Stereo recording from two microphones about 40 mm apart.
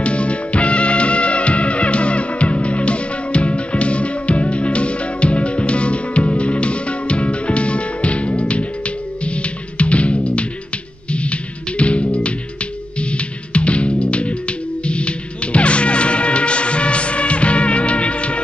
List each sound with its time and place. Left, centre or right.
0.0 s music: left